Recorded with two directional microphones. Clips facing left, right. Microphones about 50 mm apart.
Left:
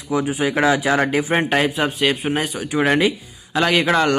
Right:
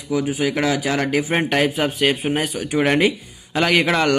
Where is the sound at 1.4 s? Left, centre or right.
Centre.